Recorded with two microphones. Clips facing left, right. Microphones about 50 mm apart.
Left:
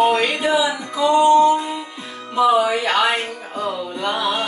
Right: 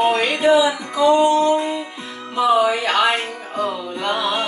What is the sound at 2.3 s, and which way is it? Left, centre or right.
Speech, centre.